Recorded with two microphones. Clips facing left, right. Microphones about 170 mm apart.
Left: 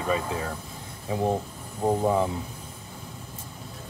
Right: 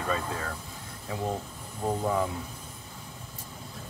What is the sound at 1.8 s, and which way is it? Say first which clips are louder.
Speech: left 5 dB; 25° left (ahead or behind).